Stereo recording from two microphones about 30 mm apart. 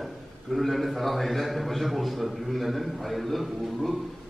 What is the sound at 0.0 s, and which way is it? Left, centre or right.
A man's voice, centre.